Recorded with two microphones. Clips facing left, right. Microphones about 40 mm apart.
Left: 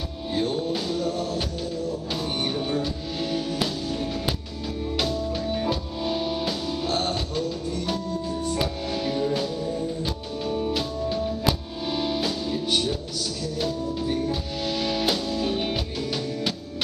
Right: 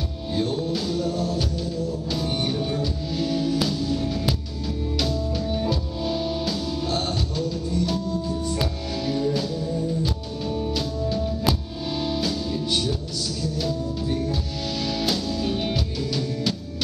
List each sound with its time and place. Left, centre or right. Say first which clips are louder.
0.3 s music: even; centre